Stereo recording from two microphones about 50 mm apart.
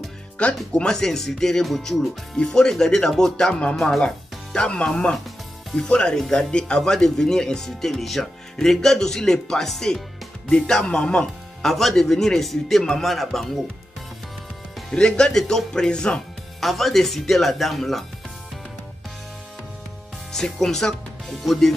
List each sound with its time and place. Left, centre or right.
0.4 s speech: left
0.7 s speech: centre
2.3 s speech: centre
11.6 s speech: centre
14.9 s speech: centre
16.5 s speech: centre
20.5 s speech: centre